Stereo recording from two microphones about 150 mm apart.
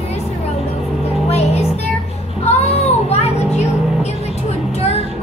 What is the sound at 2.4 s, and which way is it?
Vehicle, 45° left (ahead or behind).